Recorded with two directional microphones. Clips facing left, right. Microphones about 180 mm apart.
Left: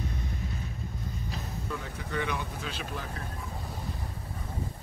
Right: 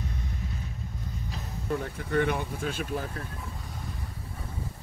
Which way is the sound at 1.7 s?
55° right (ahead or behind).